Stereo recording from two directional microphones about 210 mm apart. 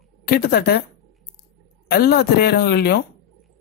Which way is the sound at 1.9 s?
50° left (ahead or behind).